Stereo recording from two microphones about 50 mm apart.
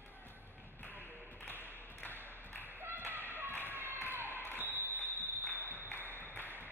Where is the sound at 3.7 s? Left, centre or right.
Right.